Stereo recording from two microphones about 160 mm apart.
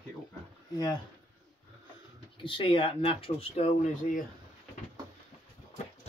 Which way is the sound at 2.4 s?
30° left (ahead or behind).